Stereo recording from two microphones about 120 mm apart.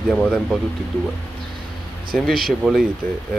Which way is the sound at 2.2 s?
Centre (ahead or behind).